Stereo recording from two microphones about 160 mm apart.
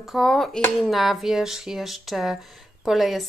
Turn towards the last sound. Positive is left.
turn(degrees=0)  # may be behind; listen again after turning